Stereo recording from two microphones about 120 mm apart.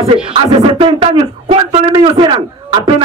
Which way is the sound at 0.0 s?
50° right (ahead or behind).